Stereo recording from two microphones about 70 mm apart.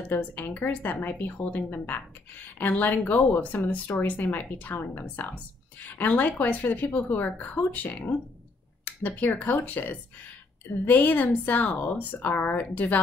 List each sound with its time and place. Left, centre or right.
0.1 s speech: left